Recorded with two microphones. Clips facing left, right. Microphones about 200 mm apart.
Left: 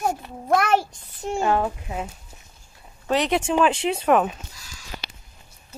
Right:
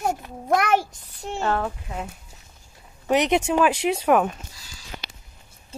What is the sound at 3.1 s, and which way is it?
Speech, 20° right (ahead or behind).